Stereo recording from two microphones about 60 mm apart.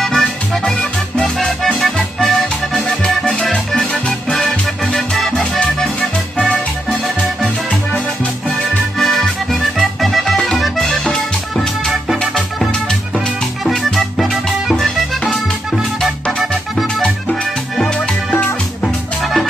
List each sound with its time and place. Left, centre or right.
0.2 s music: centre
2.0 s accordion: centre
3.1 s music: centre
9.0 s accordion: centre
10.6 s music: centre
13.9 s music: centre
16.3 s music: centre
17.0 s music: centre